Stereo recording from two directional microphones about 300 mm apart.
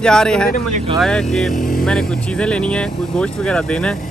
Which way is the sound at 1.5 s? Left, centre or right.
Left.